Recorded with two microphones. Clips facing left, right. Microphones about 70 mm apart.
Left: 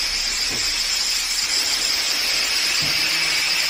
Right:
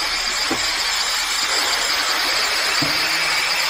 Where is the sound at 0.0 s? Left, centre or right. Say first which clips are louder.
Right 6 dB; right.